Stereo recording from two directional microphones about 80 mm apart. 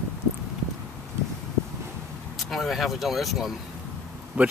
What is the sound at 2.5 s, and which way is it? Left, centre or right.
Speech, centre.